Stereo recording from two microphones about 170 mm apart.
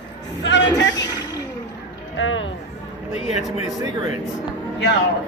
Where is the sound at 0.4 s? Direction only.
90° left.